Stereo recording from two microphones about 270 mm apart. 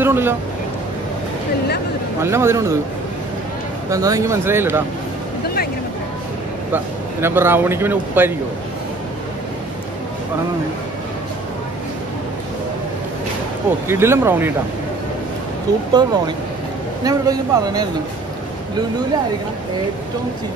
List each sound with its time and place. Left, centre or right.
0.0 s speech: centre
2.2 s speech: centre
3.9 s speech: centre
6.7 s speech: centre
13.8 s speech: centre
15.9 s speech: centre